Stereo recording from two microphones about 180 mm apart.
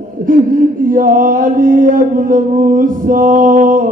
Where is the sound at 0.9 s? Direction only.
50° right (ahead or behind).